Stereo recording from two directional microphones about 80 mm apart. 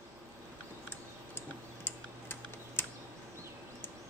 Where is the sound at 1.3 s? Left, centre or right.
Left.